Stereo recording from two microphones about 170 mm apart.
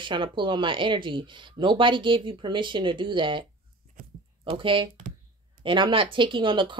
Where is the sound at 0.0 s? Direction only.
30° right (ahead or behind).